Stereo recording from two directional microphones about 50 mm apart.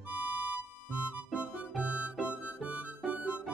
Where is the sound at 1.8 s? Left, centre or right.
Right.